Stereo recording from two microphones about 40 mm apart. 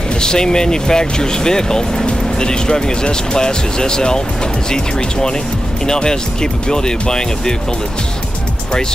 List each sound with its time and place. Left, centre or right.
0.2 s speech: centre
5.9 s speech: centre